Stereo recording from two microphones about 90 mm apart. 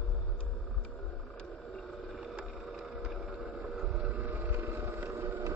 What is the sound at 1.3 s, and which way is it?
Vehicle, 5° left (ahead or behind).